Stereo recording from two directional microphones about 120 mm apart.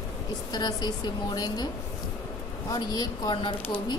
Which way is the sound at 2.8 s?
40° left (ahead or behind).